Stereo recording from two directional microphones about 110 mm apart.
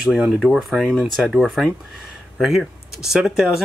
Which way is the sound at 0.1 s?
5° right (ahead or behind).